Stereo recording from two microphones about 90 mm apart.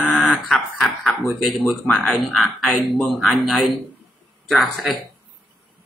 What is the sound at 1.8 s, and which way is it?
Speech, 15° left (ahead or behind).